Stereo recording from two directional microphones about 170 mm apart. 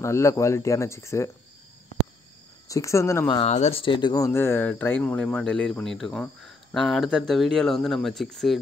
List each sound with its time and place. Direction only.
0.0 s speech: 15° left (ahead or behind)
2.7 s speech: 15° left (ahead or behind)
3.4 s speech: 40° left (ahead or behind); by 8.5 s centre (ahead or behind)